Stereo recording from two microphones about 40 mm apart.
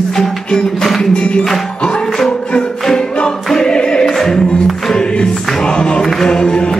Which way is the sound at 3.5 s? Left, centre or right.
Centre.